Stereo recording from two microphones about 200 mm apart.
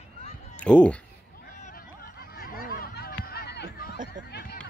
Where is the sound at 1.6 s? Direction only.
40° left (ahead or behind).